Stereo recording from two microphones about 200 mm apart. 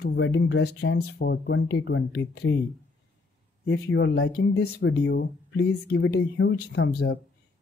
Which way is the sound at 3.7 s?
65° left (ahead or behind).